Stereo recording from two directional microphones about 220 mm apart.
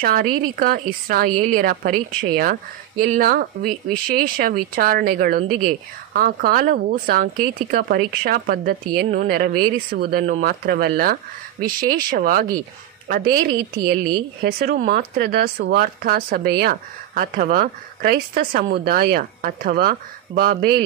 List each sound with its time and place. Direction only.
0.0 s a woman's voice: 40° right (ahead or behind)